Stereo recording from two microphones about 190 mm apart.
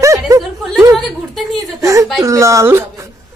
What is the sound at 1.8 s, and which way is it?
Speech, 15° right (ahead or behind).